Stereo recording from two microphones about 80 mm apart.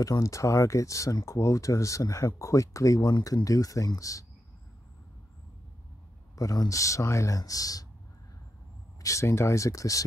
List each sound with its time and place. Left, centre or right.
0.0 s speech: left
3.0 s speech: left
3.4 s speech: left
6.3 s speech: left
9.0 s speech: left